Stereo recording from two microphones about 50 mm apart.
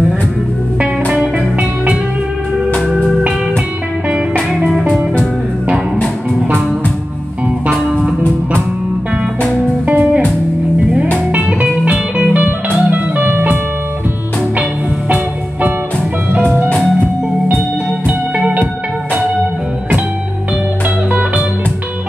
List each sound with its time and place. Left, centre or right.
1.1 s music: right
4.1 s music: right
9.8 s music: right
11.4 s music: centre; by 13.6 s right
21.1 s music: right